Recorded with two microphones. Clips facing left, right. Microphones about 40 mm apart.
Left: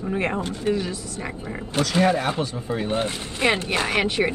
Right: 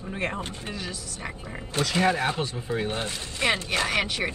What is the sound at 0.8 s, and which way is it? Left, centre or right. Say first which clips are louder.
Speech: left 7 dB; left.